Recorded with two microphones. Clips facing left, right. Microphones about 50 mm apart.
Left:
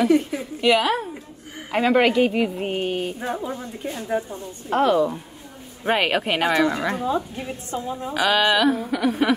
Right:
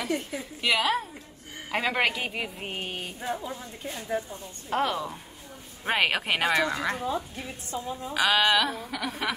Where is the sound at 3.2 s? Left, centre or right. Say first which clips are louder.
Left 5 dB; left.